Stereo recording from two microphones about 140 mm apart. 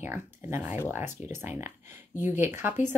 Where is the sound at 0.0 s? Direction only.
15° right (ahead or behind).